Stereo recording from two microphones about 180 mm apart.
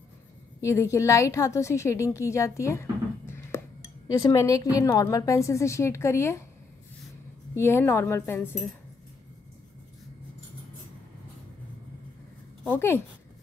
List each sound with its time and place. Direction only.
0.6 s a woman's voice: 15° left (ahead or behind)
7.5 s speech: 15° left (ahead or behind)
12.6 s speech: 15° left (ahead or behind)